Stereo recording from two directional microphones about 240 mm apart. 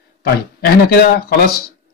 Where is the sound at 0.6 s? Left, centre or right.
Left.